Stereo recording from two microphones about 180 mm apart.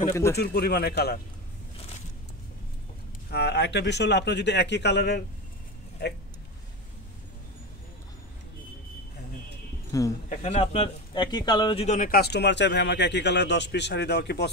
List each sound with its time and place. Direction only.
0.1 s speech: 15° left (ahead or behind)
0.4 s speech: 65° left (ahead or behind)
3.3 s speech: 65° left (ahead or behind)
9.9 s speech: 20° left (ahead or behind)
10.3 s speech: 40° left (ahead or behind); by 14.5 s 70° left (ahead or behind)